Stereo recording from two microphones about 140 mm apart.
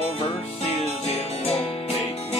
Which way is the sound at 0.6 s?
50° left (ahead or behind).